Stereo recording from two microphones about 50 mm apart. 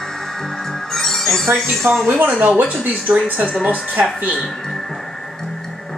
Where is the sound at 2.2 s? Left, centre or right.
Right.